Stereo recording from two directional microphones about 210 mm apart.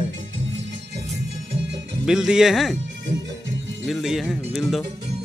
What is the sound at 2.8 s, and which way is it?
Music, 60° right (ahead or behind).